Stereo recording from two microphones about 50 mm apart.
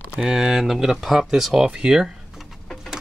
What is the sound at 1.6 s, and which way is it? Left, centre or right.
Speech, centre.